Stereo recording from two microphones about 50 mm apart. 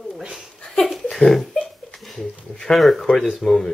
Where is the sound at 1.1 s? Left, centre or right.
Centre.